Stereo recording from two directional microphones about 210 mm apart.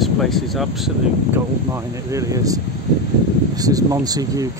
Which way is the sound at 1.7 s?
15° right (ahead or behind).